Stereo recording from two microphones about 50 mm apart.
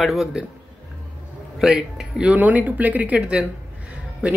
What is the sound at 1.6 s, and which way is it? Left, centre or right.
Speech, centre.